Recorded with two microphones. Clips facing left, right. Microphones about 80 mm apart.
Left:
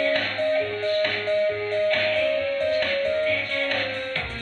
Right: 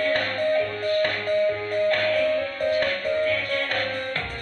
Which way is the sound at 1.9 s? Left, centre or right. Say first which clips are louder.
Right 3 dB; right.